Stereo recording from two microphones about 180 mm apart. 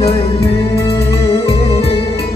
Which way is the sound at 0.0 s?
35° left (ahead or behind).